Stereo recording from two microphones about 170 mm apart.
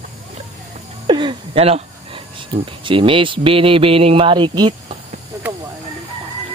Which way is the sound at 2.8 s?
30° right (ahead or behind).